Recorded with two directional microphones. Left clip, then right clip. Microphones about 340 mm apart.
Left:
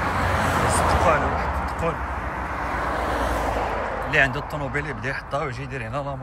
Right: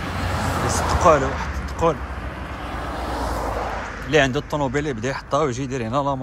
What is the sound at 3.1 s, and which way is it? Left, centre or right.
Vehicle, left.